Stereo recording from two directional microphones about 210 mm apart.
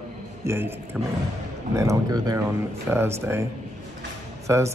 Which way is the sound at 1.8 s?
15° right (ahead or behind).